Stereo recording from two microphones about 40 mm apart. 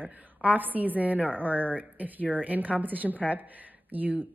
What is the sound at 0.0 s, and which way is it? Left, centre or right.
Speech, right.